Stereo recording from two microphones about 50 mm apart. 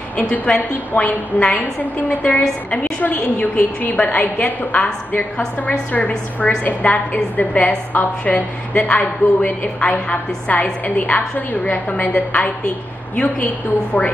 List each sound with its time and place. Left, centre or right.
0.6 s a woman's voice: left
1.4 s a woman's voice: centre
2.0 s a woman's voice: left
8.7 s a woman's voice: left